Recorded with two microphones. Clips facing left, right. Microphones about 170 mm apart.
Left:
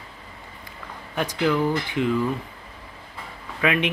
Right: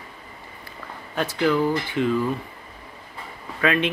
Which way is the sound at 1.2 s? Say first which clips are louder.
Right 1 dB; 15° left (ahead or behind).